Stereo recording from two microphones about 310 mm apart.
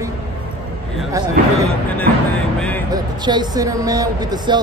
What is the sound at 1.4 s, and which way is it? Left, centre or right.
Speech, right.